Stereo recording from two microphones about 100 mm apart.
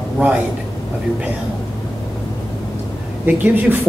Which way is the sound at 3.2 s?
20° right (ahead or behind).